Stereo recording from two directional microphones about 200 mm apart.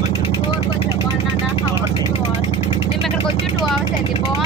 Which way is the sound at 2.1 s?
30° left (ahead or behind).